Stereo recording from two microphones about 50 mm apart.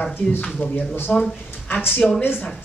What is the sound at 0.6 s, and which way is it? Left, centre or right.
Speech, left.